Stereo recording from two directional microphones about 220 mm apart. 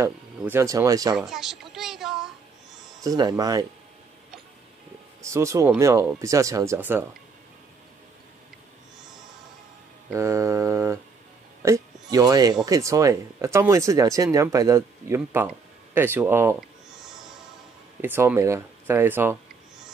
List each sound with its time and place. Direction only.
0.0 s speech: 10° right (ahead or behind)
1.1 s a sound: centre (ahead or behind)
3.0 s speech: 15° right (ahead or behind)
5.2 s speech: 15° right (ahead or behind)
10.1 s speech: 15° right (ahead or behind)